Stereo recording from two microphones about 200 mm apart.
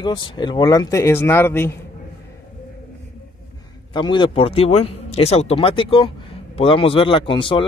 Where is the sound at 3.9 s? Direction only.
25° left (ahead or behind).